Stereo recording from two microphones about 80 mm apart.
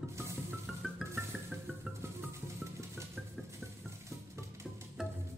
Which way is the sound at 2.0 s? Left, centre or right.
Right.